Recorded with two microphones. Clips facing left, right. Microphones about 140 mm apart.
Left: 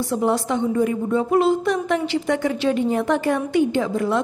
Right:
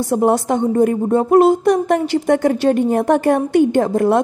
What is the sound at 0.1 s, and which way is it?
A woman's voice, 50° right (ahead or behind).